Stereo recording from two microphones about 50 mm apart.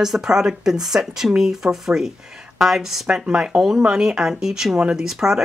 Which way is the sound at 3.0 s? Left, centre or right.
Centre.